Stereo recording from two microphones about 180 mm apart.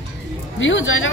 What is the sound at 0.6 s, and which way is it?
Speech, 90° left.